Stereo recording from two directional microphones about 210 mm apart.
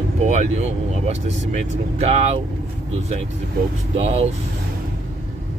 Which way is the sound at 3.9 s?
30° right (ahead or behind).